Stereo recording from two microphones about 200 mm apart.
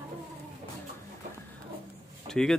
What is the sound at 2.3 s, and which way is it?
Speech, 5° left (ahead or behind).